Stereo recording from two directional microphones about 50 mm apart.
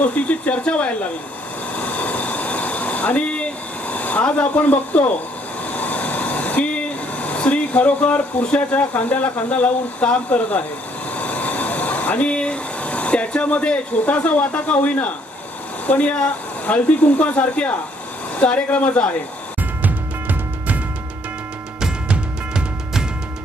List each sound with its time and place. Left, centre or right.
0.0 s speech: left
1.8 s vehicle: left
3.9 s speech: left
11.1 s a sound: left
15.9 s speech: left
19.8 s music: right
21.8 s music: centre